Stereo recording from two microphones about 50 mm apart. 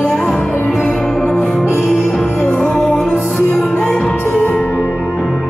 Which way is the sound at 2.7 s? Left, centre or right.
Centre.